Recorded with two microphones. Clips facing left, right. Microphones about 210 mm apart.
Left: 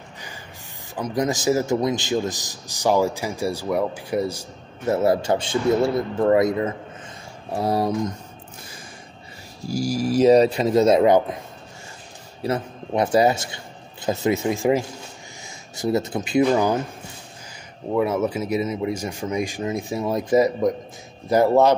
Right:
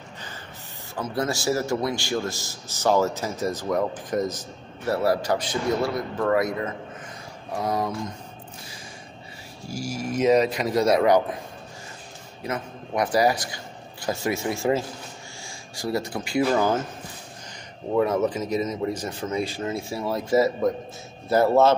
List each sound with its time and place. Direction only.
0.9 s a man's voice: 15° left (ahead or behind)
4.9 s a man's voice: 20° left (ahead or behind)
9.6 s a man's voice: 35° left (ahead or behind)
12.4 s a man's voice: 30° left (ahead or behind)
17.9 s a man's voice: 10° left (ahead or behind)